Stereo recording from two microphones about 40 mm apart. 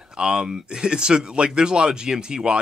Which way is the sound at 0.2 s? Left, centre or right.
Centre.